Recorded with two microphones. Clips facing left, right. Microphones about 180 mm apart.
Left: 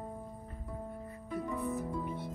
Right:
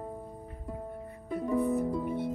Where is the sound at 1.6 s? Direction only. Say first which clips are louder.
Right 11 dB; 60° right (ahead or behind).